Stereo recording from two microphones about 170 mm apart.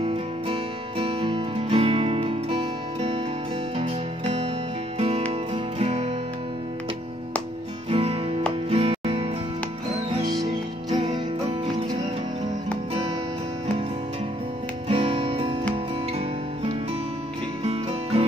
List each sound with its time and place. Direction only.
0.0 s music: 35° right (ahead or behind)
4.9 s music: 35° right (ahead or behind)
7.9 s music: 35° right (ahead or behind)
14.9 s music: 35° right (ahead or behind)